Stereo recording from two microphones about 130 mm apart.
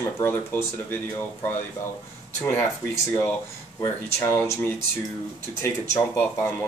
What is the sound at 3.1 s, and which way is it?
Speech, 15° left (ahead or behind).